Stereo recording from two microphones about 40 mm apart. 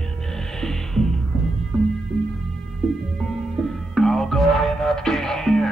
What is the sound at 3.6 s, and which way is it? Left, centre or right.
Music, centre.